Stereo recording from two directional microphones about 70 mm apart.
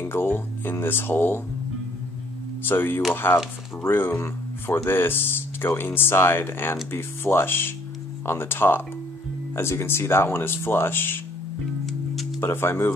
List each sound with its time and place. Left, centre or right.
0.0 s speech: left
2.7 s speech: left
12.4 s speech: left